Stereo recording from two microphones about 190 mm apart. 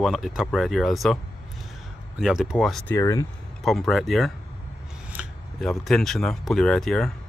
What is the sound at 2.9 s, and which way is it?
Speech, 15° left (ahead or behind).